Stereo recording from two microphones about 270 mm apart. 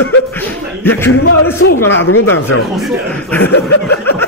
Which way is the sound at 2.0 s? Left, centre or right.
Left.